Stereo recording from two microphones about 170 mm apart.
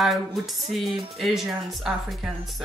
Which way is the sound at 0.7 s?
Centre (ahead or behind).